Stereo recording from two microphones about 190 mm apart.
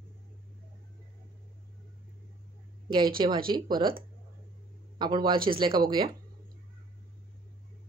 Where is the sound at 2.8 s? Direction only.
20° right (ahead or behind).